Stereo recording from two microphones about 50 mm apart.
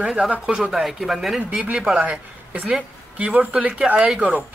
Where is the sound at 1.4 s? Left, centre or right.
Right.